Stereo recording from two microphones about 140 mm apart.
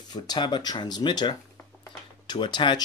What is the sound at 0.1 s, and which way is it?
Speech, 30° left (ahead or behind).